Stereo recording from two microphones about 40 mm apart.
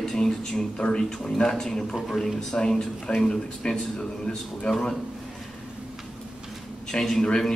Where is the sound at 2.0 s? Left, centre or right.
Centre.